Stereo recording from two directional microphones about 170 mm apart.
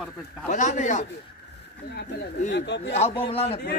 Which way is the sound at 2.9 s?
40° left (ahead or behind).